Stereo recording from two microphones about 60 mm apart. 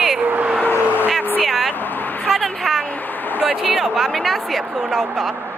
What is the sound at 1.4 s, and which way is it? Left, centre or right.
Speech, centre.